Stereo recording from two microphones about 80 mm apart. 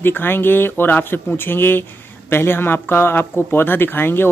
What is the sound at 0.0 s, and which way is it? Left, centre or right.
Speech, left.